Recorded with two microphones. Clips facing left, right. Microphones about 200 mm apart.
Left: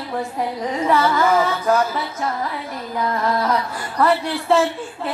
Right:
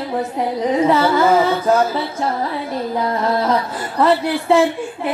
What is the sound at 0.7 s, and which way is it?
Music, 25° right (ahead or behind).